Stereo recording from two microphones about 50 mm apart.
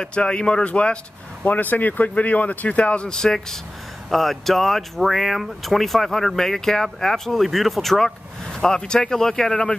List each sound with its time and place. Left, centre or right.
0.0 s speech: centre
1.4 s speech: left
3.2 s speech: centre